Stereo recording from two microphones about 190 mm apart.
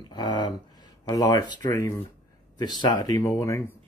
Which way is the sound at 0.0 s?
25° left (ahead or behind).